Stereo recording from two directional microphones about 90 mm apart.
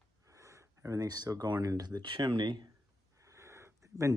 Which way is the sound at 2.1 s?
60° right (ahead or behind).